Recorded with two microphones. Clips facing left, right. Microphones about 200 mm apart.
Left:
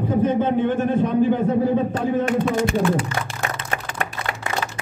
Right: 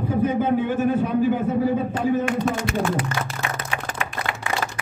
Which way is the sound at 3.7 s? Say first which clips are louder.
Left 1 dB; 45° left (ahead or behind).